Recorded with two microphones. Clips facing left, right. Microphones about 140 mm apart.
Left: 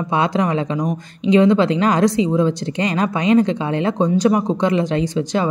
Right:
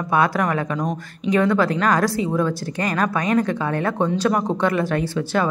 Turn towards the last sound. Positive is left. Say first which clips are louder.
# left 2 dB
turn(degrees=15)  # may be behind; listen again after turning